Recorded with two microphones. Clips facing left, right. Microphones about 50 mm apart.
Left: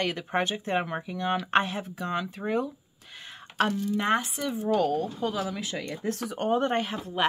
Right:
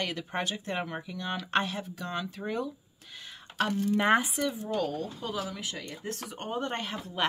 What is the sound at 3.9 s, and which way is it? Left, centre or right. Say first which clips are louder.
Speech: right 4 dB; centre.